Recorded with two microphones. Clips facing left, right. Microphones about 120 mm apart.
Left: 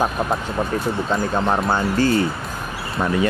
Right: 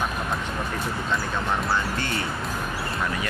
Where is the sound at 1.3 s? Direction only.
35° left (ahead or behind).